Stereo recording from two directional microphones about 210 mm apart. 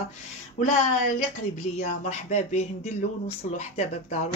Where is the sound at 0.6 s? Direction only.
35° left (ahead or behind).